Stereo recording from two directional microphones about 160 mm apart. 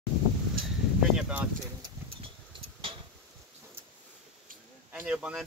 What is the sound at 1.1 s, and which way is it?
Speech, 5° right (ahead or behind).